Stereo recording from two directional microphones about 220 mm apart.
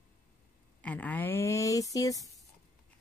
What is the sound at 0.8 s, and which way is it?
Speech, 5° left (ahead or behind).